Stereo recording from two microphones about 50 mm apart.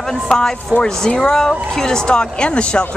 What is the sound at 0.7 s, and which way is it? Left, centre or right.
Speech, right.